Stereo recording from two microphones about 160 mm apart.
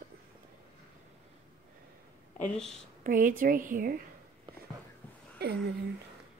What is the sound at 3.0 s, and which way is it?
Speech, 55° right (ahead or behind).